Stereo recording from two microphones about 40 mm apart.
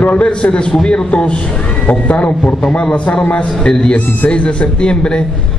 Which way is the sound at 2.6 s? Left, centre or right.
Left.